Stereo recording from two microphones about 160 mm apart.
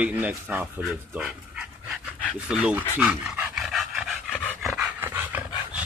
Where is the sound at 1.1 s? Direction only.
5° right (ahead or behind).